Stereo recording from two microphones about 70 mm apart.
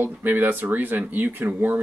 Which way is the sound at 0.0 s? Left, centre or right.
Right.